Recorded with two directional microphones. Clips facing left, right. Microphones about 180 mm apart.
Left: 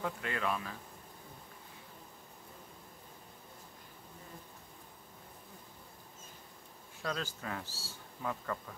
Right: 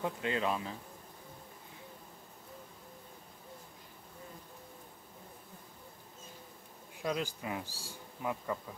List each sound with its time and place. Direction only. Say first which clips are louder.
0.0 s speech: right 3 dB; 20° right (ahead or behind)
7.0 s speech: right 3 dB; 15° right (ahead or behind)